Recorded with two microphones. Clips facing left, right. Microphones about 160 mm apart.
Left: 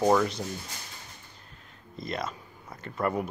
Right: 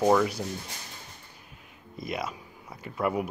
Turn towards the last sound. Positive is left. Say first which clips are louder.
# right 1 dB
turn(degrees=-5)  # may be behind; listen again after turning